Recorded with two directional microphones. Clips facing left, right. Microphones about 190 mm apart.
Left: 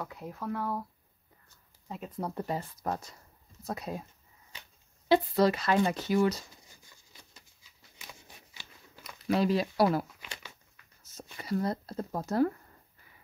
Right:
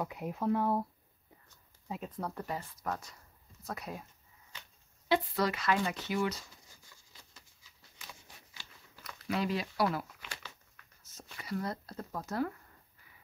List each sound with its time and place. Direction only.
0.0 s speech: 15° right (ahead or behind)
2.1 s speech: 15° left (ahead or behind)
2.4 s speech: 30° left (ahead or behind)
5.0 s speech: 30° left (ahead or behind)
8.0 s a sound: 15° left (ahead or behind)
9.3 s speech: 35° left (ahead or behind)
10.2 s crumpling: 15° left (ahead or behind)
11.3 s speech: 35° left (ahead or behind)